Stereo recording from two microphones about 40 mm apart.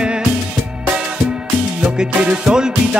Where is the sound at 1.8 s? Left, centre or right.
Right.